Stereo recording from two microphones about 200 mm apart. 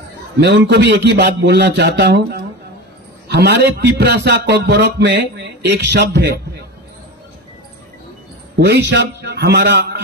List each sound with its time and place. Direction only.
0.4 s a man's voice: 55° right (ahead or behind)
8.5 s a man's voice: 55° right (ahead or behind)